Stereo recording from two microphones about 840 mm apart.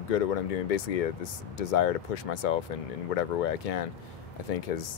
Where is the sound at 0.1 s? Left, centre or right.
Left.